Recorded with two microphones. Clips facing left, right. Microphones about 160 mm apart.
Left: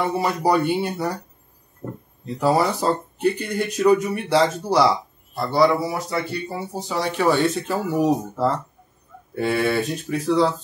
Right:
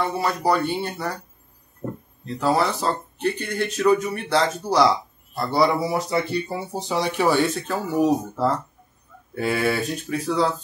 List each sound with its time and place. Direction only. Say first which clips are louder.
0.0 s speech: left 2 dB; 15° left (ahead or behind)
2.2 s speech: left 2 dB; 10° left (ahead or behind)
5.5 s speech: left 2 dB; 15° right (ahead or behind)
7.5 s speech: left 1 dB; 5° left (ahead or behind)